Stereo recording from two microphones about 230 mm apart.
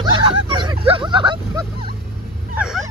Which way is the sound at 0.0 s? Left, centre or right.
Right.